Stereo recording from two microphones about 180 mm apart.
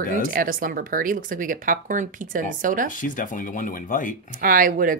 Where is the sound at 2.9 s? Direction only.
45° left (ahead or behind).